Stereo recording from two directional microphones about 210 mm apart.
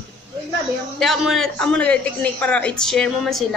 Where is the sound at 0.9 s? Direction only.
Centre (ahead or behind).